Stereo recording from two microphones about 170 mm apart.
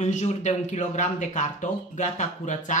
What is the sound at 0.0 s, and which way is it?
Speech, 40° left (ahead or behind).